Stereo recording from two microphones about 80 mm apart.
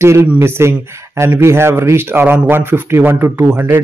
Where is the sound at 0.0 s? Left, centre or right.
Right.